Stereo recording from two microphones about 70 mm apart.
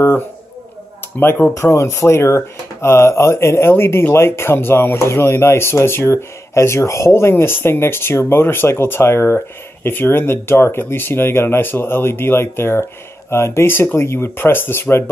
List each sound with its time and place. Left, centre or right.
1.2 s speech: left
1.5 s speech: left